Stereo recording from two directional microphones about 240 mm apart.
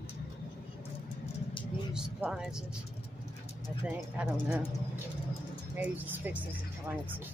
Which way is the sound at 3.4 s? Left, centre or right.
Left.